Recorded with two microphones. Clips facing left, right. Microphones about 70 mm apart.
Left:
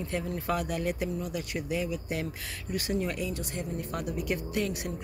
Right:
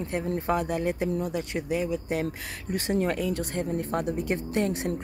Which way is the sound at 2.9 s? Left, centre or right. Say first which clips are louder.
Right 8 dB; right.